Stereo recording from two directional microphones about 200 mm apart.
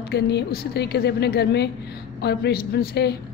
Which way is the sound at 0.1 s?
55° left (ahead or behind).